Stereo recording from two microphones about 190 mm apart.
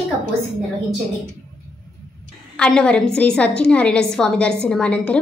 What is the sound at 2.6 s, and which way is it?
A woman's voice, 5° left (ahead or behind).